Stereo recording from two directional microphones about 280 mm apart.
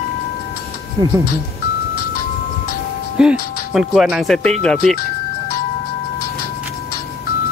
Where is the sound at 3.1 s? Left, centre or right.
Centre.